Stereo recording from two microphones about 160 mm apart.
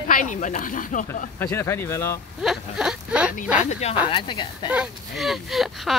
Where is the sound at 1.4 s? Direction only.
15° left (ahead or behind).